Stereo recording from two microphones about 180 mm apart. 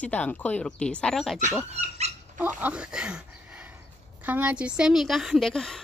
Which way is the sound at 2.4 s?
10° right (ahead or behind).